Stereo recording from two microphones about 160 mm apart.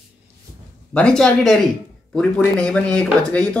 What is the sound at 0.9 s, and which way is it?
Speech, 5° left (ahead or behind).